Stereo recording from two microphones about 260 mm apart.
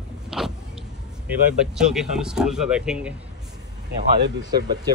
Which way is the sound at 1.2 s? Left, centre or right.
Centre.